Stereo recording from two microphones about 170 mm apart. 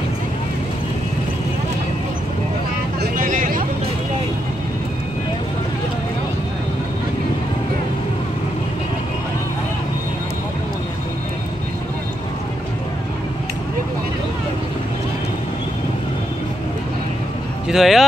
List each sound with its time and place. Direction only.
3.2 s vehicle: 50° right (ahead or behind)
17.6 s speech: centre (ahead or behind)